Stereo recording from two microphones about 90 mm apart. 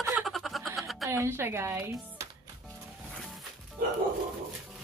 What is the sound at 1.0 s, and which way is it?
Speech, 30° right (ahead or behind).